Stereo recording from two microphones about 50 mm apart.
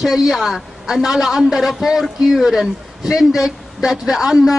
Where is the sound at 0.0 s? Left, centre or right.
Centre.